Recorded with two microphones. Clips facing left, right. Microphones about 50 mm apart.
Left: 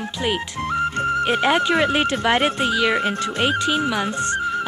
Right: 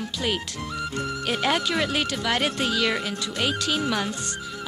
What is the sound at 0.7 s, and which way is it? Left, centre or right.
Music, left.